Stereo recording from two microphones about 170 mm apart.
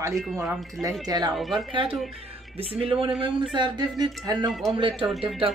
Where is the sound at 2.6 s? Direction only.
35° right (ahead or behind).